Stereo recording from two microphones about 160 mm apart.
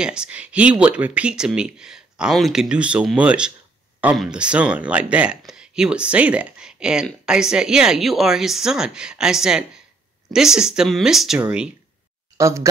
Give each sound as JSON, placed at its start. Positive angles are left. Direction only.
{"t": 0.0, "sound": "a woman's voice", "side_deg": -5}
{"t": 12.4, "sound": "speech", "side_deg": -20}